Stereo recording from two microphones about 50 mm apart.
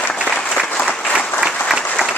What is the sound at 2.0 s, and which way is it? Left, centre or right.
Applause, centre.